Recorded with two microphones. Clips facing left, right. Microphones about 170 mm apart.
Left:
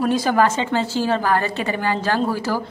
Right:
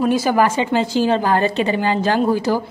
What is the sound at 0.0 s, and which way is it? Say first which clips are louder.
A woman's voice: right 2 dB; 10° right (ahead or behind).